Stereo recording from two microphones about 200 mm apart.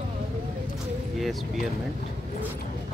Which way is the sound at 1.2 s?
Centre (ahead or behind).